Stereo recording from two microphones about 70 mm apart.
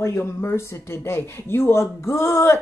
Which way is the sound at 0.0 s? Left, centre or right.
Left.